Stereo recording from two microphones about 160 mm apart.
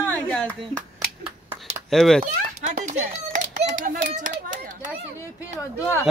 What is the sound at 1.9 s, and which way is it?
Speech, centre (ahead or behind).